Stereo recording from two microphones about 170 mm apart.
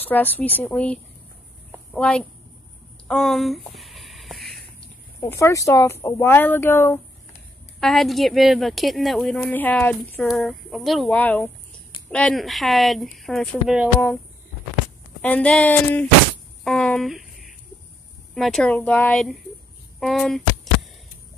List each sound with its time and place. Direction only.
0.1 s a woman's voice: 10° left (ahead or behind)
3.1 s a sound: centre (ahead or behind)
5.2 s speech: 15° left (ahead or behind)
7.8 s a woman's voice: centre (ahead or behind)
15.2 s speech: 10° left (ahead or behind)
16.6 s a sound: 5° left (ahead or behind)
18.3 s a woman's voice: centre (ahead or behind)